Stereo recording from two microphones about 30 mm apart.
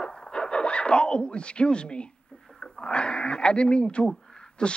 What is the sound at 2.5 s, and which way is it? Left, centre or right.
Speech, left.